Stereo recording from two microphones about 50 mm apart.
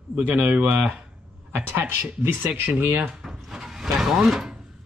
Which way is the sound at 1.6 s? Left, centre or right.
Right.